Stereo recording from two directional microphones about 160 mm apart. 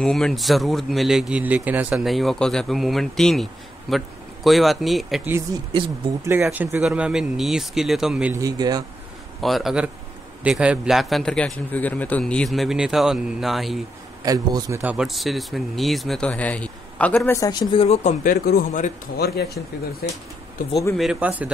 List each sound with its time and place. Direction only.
0.0 s speech: 5° left (ahead or behind)
6.2 s speech: 15° right (ahead or behind)
8.4 s a man's voice: 25° right (ahead or behind)
9.4 s speech: centre (ahead or behind)
14.2 s a man's voice: 20° right (ahead or behind)
14.8 s speech: 5° right (ahead or behind); by 17.8 s 25° left (ahead or behind)
17.8 s speech: 50° left (ahead or behind)
19.1 s speech: 85° left
20.6 s speech: 50° left (ahead or behind)
21.0 s speech: 5° right (ahead or behind)